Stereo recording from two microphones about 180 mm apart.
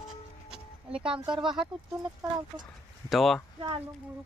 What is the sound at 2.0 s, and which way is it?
Speech, 20° right (ahead or behind).